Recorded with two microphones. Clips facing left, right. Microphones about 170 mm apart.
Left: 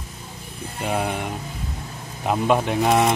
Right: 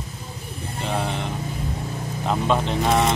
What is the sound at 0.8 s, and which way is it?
Speech, 10° left (ahead or behind).